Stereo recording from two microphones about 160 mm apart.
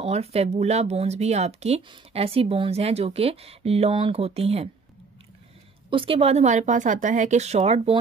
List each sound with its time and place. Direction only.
0.0 s speech: 40° right (ahead or behind)
5.9 s a woman's voice: 35° right (ahead or behind)